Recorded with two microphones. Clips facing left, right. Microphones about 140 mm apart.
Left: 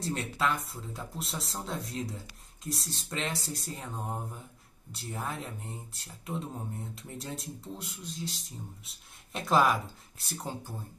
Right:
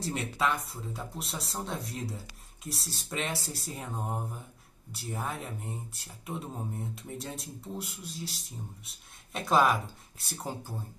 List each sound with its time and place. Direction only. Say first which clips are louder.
0.0 s speech: even; centre (ahead or behind)